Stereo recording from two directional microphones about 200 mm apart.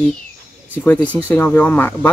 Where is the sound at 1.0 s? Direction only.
10° left (ahead or behind).